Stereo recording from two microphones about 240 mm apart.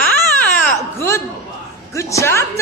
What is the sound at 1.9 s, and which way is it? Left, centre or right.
Speech, centre.